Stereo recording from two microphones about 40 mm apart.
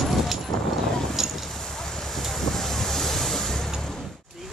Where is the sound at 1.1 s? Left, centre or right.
Centre.